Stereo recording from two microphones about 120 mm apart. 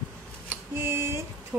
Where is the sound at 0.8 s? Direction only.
20° right (ahead or behind).